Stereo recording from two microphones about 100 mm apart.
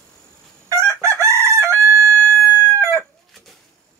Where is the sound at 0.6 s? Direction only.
30° right (ahead or behind).